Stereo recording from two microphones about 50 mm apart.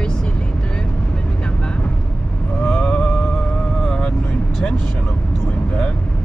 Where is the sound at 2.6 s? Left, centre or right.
Left.